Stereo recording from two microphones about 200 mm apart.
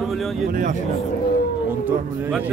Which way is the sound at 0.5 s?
40° right (ahead or behind).